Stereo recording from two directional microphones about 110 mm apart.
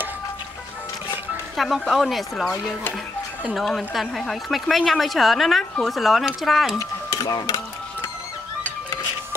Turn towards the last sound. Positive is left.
turn(degrees=35)  # may be behind; listen again after turning